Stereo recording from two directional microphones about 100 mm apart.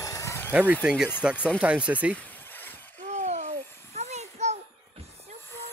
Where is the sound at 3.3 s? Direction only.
90° right.